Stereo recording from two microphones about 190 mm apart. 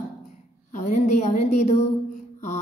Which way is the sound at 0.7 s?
40° left (ahead or behind).